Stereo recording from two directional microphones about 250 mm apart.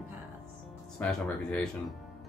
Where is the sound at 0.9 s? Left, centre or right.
Centre.